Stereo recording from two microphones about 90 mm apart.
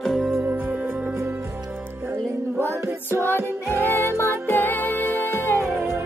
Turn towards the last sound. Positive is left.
turn(degrees=20)  # may be behind; listen again after turning